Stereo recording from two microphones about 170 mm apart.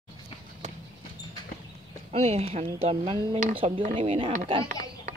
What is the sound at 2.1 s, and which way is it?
Speech, 40° right (ahead or behind).